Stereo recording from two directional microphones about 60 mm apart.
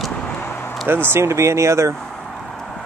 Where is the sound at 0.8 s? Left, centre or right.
Right.